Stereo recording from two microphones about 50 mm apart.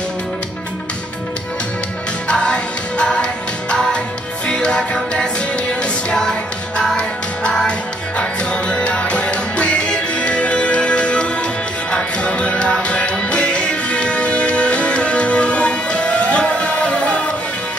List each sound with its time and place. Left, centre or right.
2.2 s music: centre
4.5 s music: centre